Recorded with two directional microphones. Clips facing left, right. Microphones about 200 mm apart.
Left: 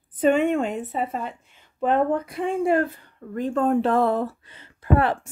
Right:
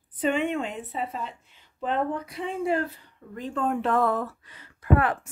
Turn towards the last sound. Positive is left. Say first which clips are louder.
# left 2 dB
turn(degrees=30)  # may be behind; listen again after turning